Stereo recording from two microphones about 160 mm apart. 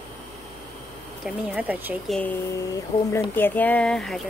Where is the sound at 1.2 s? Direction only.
10° right (ahead or behind).